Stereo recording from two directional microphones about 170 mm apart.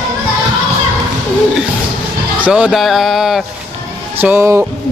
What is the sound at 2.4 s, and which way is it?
A man's voice, 5° right (ahead or behind).